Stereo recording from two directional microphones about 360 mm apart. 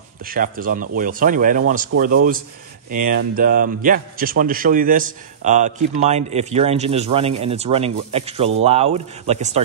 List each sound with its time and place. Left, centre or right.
0.2 s a man's voice: right